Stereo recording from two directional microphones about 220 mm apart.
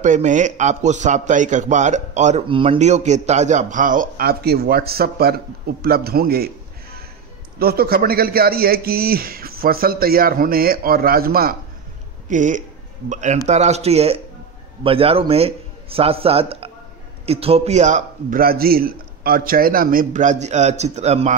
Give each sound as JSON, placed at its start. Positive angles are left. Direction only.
{"t": 0.0, "sound": "a man's voice", "side_deg": -35}